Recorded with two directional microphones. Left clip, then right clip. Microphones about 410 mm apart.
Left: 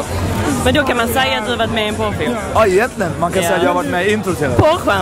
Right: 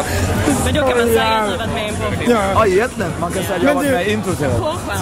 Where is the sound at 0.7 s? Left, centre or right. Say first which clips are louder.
Left 1 dB; left.